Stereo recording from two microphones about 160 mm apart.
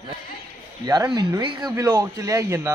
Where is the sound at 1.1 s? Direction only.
25° right (ahead or behind).